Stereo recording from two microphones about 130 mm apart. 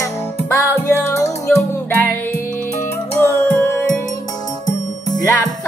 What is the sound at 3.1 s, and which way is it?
Music, 15° left (ahead or behind).